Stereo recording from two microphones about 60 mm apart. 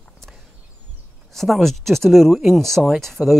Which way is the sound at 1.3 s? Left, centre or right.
Centre.